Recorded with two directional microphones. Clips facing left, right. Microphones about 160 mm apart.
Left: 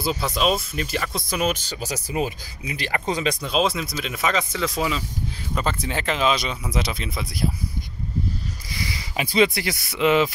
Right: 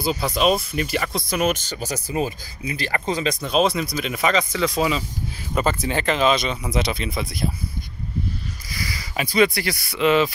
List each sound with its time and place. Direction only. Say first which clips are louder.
0.4 s speech: right 4 dB; 5° right (ahead or behind)
1.3 s speech: right 2 dB; 50° right (ahead or behind)
2.0 s speech: right 1 dB; 10° left (ahead or behind)
3.1 s speech: right 1 dB; 35° right (ahead or behind)
3.7 s speech: right 4 dB; centre (ahead or behind)
8.8 s speech: even; 20° left (ahead or behind)